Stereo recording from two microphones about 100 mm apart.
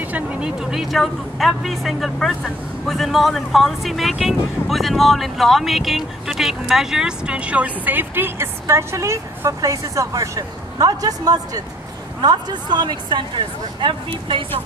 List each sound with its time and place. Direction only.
0.1 s a woman's voice: 5° right (ahead or behind); by 14.4 s 55° right (ahead or behind)